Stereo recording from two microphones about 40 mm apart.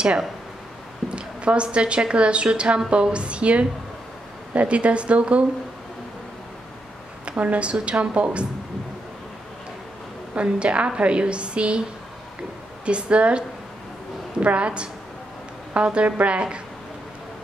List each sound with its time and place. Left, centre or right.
1.1 s a woman's voice: right
7.2 s a woman's voice: right
10.3 s speech: right
12.8 s speech: right